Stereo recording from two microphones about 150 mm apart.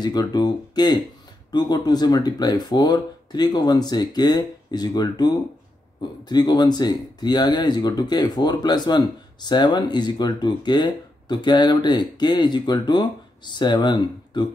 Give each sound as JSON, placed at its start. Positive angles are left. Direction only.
{"t": 0.0, "sound": "speech", "side_deg": 25}